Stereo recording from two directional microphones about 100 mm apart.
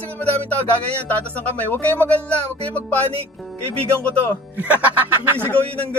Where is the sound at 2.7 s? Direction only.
15° left (ahead or behind).